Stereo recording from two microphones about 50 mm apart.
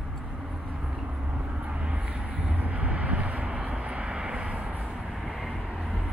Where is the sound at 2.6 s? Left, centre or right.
Right.